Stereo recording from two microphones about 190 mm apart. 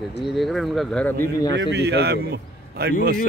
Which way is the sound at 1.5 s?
65° right (ahead or behind).